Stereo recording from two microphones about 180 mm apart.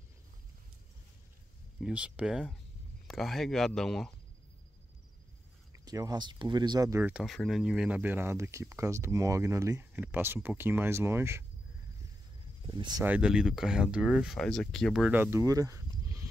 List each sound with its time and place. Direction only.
1.8 s speech: 5° right (ahead or behind)
5.7 s speech: 20° right (ahead or behind)
12.7 s speech: 25° right (ahead or behind)
13.0 s speech: 5° right (ahead or behind)